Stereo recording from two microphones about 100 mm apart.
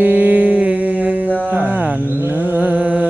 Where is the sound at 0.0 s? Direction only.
15° right (ahead or behind).